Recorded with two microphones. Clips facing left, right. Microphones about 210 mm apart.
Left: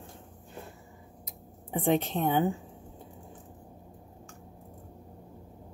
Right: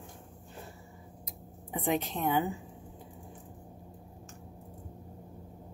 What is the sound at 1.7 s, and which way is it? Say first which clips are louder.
Speech: left 4 dB; 25° left (ahead or behind).